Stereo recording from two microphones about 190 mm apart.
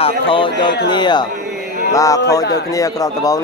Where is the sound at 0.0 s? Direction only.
25° left (ahead or behind).